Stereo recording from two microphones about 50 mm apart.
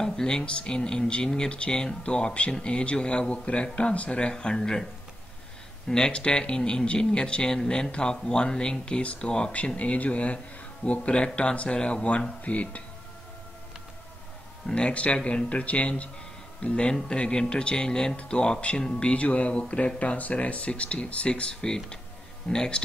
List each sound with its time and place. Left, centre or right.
0.0 s speech: centre
5.9 s speech: centre
14.7 s speech: left